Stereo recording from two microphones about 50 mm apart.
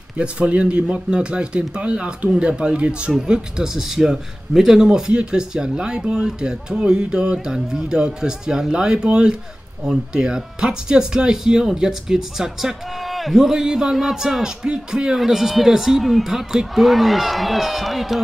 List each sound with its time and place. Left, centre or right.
0.2 s speech: right; by 18.2 s centre